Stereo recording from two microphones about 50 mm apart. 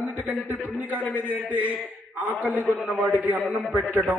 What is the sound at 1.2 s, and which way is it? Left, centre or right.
A man's voice, right.